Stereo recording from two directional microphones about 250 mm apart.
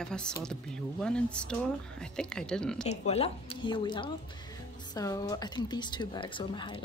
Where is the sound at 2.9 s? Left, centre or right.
Left.